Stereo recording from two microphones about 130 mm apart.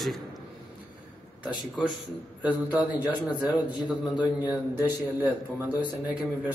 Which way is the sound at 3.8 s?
10° right (ahead or behind).